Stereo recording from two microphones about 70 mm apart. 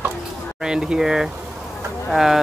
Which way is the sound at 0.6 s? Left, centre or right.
Centre.